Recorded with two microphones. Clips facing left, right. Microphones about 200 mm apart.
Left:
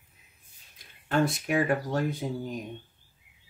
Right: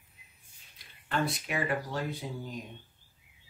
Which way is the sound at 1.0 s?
45° left (ahead or behind).